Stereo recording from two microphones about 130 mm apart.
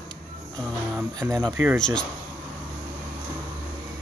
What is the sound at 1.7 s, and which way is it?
Speech, 5° left (ahead or behind).